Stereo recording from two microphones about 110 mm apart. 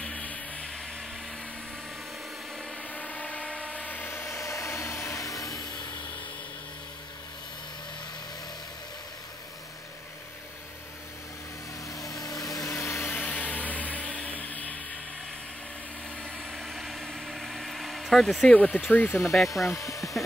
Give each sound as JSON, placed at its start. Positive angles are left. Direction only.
{"t": 0.0, "sound": "blender", "side_deg": 10}
{"t": 2.9, "sound": "vehicle", "side_deg": 10}
{"t": 11.9, "sound": "vehicle", "side_deg": 30}
{"t": 13.0, "sound": "a sound", "side_deg": 10}
{"t": 16.2, "sound": "vehicle", "side_deg": 0}
{"t": 18.9, "sound": "speech", "side_deg": 15}
{"t": 19.2, "sound": "speech", "side_deg": 0}
{"t": 19.7, "sound": "speech", "side_deg": 30}